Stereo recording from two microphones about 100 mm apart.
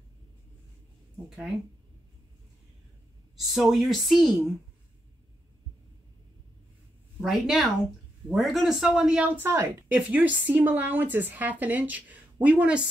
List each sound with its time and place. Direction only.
3.3 s speech: 5° right (ahead or behind)
7.2 s speech: 5° right (ahead or behind)
9.4 s a woman's voice: 25° right (ahead or behind)
9.8 s a woman's voice: 15° right (ahead or behind)